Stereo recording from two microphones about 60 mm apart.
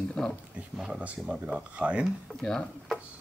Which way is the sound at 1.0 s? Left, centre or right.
Right.